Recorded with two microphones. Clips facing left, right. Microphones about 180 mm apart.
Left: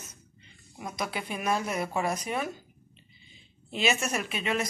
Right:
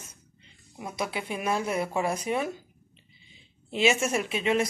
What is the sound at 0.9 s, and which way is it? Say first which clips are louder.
Speech: right 2 dB; 25° right (ahead or behind).